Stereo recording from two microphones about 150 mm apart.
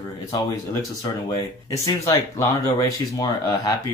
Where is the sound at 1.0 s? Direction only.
20° left (ahead or behind).